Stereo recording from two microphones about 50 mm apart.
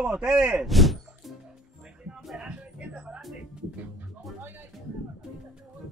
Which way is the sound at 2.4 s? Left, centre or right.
Right.